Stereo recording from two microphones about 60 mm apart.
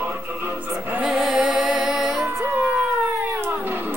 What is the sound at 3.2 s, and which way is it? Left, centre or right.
Cat, right.